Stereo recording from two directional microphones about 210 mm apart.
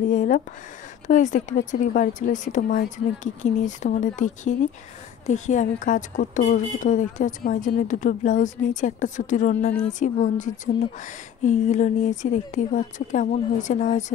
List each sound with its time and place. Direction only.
0.1 s a woman's voice: 35° left (ahead or behind)